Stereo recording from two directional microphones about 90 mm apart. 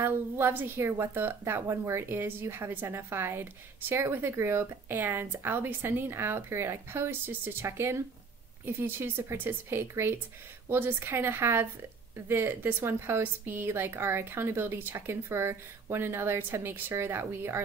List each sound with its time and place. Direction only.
0.0 s a woman's voice: 25° right (ahead or behind)